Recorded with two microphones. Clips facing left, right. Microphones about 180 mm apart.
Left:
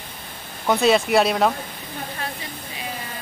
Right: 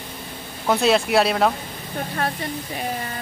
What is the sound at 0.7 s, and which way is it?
Speech, centre (ahead or behind).